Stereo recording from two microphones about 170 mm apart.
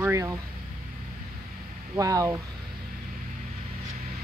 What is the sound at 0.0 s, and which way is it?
Vehicle, 15° right (ahead or behind).